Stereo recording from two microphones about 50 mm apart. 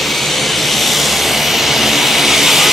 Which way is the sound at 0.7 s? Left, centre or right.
Centre.